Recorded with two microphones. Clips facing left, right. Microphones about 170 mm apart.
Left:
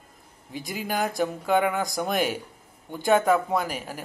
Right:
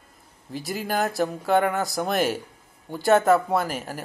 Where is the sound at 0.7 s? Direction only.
40° right (ahead or behind).